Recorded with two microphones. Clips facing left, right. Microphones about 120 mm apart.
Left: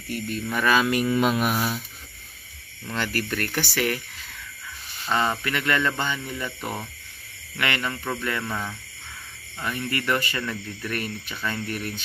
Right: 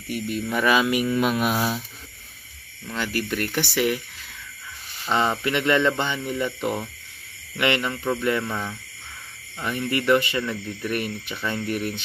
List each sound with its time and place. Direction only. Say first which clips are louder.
0.1 s speech: right 2 dB; 15° right (ahead or behind)
1.0 s speech: even; 5° left (ahead or behind)
1.4 s speech: right 1 dB; 20° right (ahead or behind)
3.0 s speech: right 2 dB; 15° right (ahead or behind)
5.0 s speech: right 2 dB; 20° right (ahead or behind)